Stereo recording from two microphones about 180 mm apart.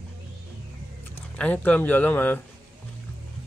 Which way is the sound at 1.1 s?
10° left (ahead or behind).